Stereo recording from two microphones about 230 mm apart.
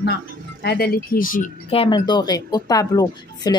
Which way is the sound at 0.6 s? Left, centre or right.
Left.